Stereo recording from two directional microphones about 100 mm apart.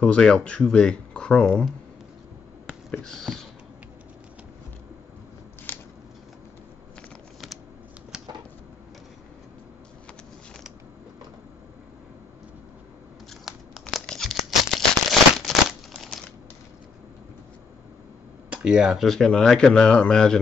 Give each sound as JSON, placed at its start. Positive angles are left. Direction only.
{"t": 0.0, "sound": "speech", "side_deg": 10}
{"t": 2.9, "sound": "speech", "side_deg": 5}
{"t": 5.7, "sound": "a sound", "side_deg": 20}
{"t": 8.1, "sound": "a sound", "side_deg": -5}
{"t": 13.3, "sound": "tearing", "side_deg": 0}
{"t": 15.3, "sound": "crumpling", "side_deg": 0}
{"t": 18.5, "sound": "speech", "side_deg": -10}